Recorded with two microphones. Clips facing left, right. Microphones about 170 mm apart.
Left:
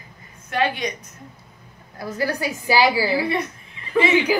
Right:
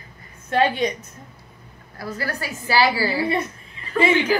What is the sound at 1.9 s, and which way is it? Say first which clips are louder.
A woman's voice: left 4 dB; 15° left (ahead or behind).